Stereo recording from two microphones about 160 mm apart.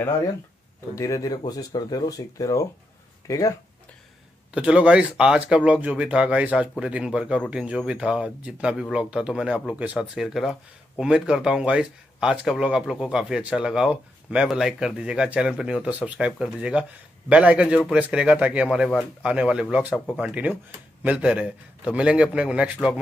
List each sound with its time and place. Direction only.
0.9 s speech: 20° left (ahead or behind)
4.6 s speech: 5° right (ahead or behind)